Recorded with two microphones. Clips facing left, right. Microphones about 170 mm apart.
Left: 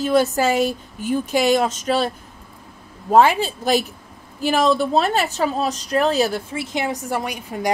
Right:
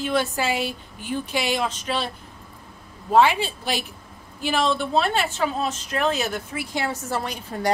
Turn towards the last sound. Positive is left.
turn(degrees=10)  # may be behind; listen again after turning